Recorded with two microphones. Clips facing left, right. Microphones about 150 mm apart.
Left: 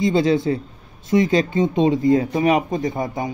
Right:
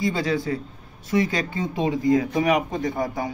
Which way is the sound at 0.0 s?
25° left (ahead or behind).